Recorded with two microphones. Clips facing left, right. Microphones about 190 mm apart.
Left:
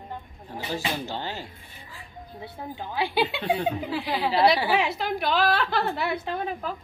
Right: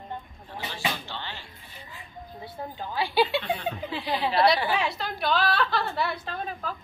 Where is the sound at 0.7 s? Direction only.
40° left (ahead or behind).